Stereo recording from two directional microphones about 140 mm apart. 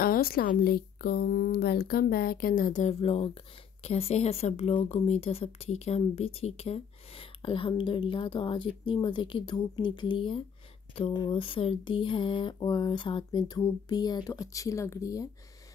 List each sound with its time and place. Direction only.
0.0 s a woman's voice: 90° left; by 2.9 s 70° left (ahead or behind)
2.9 s speech: 45° left (ahead or behind); by 15.2 s 25° left (ahead or behind)